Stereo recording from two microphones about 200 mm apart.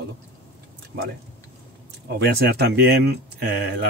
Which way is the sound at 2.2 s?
55° right (ahead or behind).